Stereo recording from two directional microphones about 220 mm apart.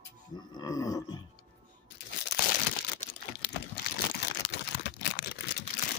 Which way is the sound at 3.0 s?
35° left (ahead or behind).